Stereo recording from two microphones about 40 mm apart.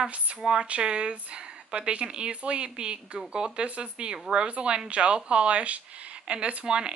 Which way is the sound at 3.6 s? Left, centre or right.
Right.